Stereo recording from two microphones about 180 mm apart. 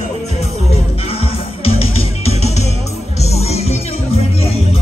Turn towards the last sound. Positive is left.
turn(degrees=35)  # may be behind; listen again after turning